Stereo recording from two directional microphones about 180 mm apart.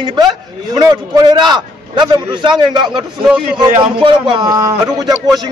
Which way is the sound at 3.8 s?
25° right (ahead or behind).